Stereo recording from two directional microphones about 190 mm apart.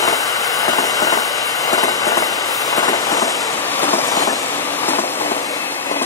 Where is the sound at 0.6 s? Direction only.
20° left (ahead or behind).